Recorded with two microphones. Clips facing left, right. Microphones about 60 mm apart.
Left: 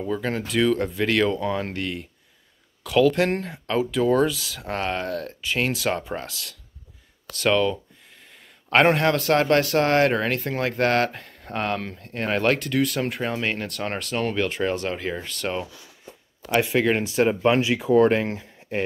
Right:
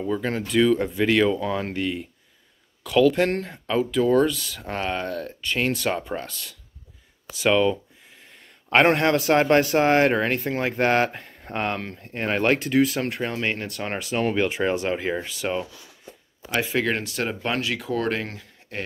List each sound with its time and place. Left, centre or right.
0.0 s speech: centre
16.5 s speech: centre
17.0 s speech: centre